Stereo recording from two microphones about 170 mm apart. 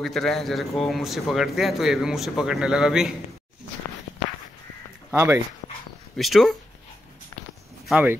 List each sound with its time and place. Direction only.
0.0 s speech: centre (ahead or behind)
5.1 s speech: 15° right (ahead or behind)
6.1 s speech: centre (ahead or behind)
7.8 s speech: 5° right (ahead or behind)